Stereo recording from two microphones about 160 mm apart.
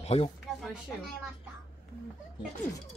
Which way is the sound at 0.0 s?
40° left (ahead or behind).